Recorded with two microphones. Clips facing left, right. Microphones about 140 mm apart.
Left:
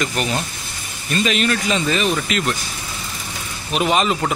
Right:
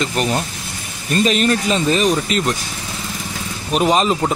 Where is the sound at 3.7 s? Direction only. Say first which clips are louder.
Right 3 dB; 35° right (ahead or behind).